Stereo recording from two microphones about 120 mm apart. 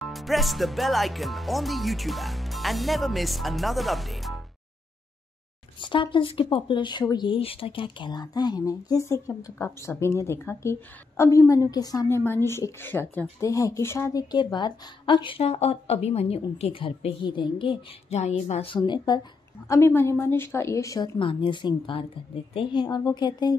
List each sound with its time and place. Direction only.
0.0 s speech: centre (ahead or behind)
5.8 s speech: 40° left (ahead or behind)
12.3 s a woman's voice: 20° left (ahead or behind)
14.3 s a woman's voice: 40° left (ahead or behind)
18.1 s a woman's voice: 65° left (ahead or behind)
18.8 s speech: 35° left (ahead or behind)
19.7 s a woman's voice: 20° left (ahead or behind)
21.2 s a woman's voice: 45° left (ahead or behind)